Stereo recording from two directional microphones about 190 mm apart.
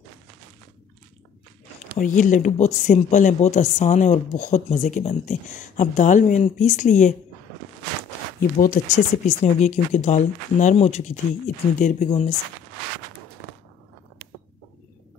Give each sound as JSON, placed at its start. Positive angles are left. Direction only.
{"t": 2.0, "sound": "speech", "side_deg": 40}
{"t": 8.4, "sound": "speech", "side_deg": 50}
{"t": 9.2, "sound": "speech", "side_deg": 35}